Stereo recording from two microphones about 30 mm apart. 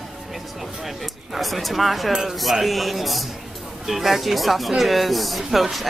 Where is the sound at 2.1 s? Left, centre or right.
Centre.